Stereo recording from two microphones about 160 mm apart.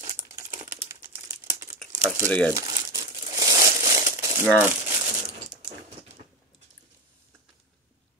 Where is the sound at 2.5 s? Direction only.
20° right (ahead or behind).